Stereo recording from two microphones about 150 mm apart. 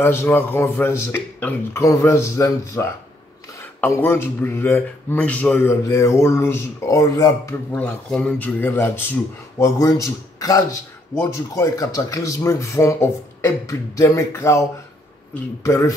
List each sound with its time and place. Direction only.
0.0 s speech: 15° left (ahead or behind)
7.7 s speech: 5° left (ahead or behind)